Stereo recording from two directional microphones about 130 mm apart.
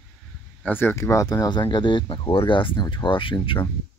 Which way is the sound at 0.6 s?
15° left (ahead or behind).